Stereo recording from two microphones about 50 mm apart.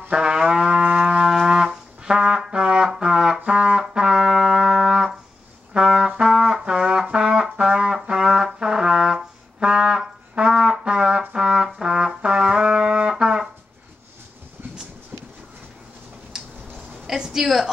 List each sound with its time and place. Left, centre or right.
0.1 s music: centre
1.3 s brass instrument: centre
10.5 s music: centre
10.8 s brass instrument: centre
12.2 s trumpet: centre
13.1 s music: centre
16.3 s tick-tock: centre
17.0 s a sound: centre